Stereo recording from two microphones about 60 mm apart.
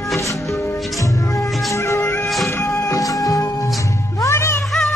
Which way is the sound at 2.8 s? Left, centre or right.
Left.